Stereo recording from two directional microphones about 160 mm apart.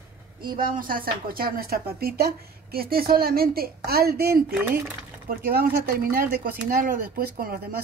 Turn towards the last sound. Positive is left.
turn(degrees=-70)  # may be behind; listen again after turning